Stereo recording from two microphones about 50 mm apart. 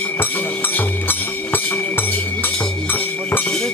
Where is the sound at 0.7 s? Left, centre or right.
Left.